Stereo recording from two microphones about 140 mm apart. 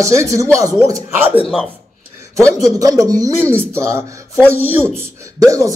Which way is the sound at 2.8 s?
25° right (ahead or behind).